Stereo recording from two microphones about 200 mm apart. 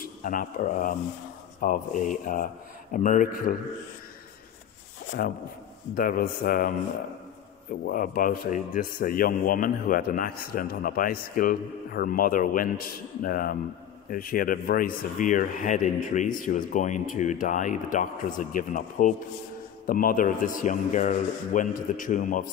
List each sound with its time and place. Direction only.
0.0 s speech: 45° left (ahead or behind)
5.9 s speech: 45° left (ahead or behind)
7.8 s speech: 45° left (ahead or behind)